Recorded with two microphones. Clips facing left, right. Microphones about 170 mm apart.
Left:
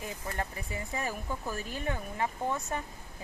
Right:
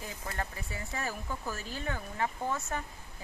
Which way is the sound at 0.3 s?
25° left (ahead or behind).